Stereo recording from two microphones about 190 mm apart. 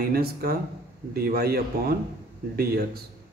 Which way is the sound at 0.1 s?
55° right (ahead or behind).